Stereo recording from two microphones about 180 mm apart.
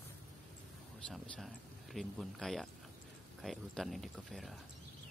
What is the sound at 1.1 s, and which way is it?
Speech, centre (ahead or behind).